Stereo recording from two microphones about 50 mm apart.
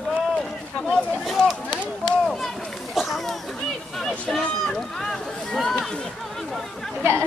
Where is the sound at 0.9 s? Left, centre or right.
Centre.